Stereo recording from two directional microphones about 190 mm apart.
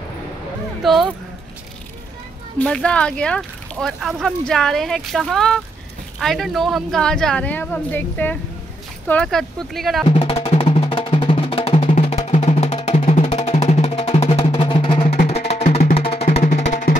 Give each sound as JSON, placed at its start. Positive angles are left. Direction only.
{"t": 0.8, "sound": "speech", "side_deg": 0}
{"t": 2.6, "sound": "speech", "side_deg": 5}
{"t": 10.0, "sound": "music", "side_deg": 30}